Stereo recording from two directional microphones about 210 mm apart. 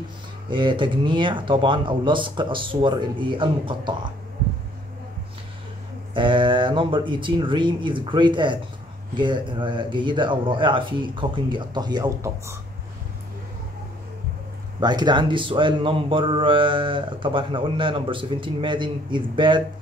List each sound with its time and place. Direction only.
0.5 s speech: 25° right (ahead or behind)
6.1 s speech: 25° right (ahead or behind)
14.8 s speech: 20° right (ahead or behind)